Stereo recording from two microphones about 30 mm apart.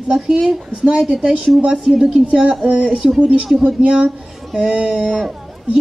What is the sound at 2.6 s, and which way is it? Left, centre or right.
A woman's voice, right.